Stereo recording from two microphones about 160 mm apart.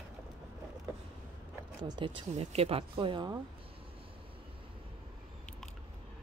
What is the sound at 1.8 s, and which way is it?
Speech, 30° right (ahead or behind).